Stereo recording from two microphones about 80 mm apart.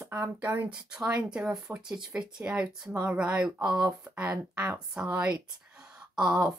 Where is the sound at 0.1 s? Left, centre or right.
Right.